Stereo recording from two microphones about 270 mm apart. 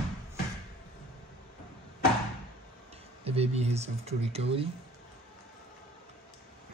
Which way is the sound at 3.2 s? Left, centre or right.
Right.